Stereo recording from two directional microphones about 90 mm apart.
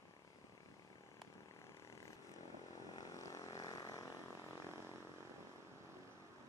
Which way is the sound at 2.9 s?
40° left (ahead or behind).